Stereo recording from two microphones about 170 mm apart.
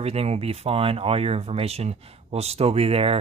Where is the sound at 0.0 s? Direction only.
35° right (ahead or behind).